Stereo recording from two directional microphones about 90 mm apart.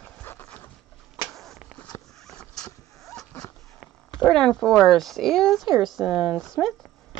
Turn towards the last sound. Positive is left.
turn(degrees=5)  # may be behind; listen again after turning